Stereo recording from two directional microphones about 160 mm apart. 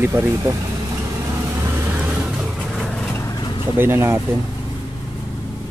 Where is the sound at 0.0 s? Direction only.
15° right (ahead or behind).